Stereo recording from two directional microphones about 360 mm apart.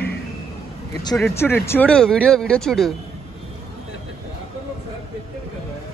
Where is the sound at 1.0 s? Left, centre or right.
Centre.